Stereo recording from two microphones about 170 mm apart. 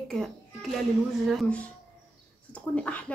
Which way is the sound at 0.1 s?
Centre (ahead or behind).